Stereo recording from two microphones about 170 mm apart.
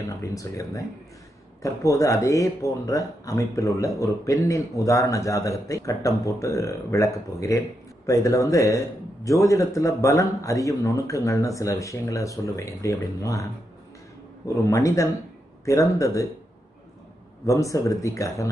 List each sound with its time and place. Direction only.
0.1 s speech: 20° left (ahead or behind)
14.5 s speech: 20° left (ahead or behind)
17.5 s speech: 20° left (ahead or behind)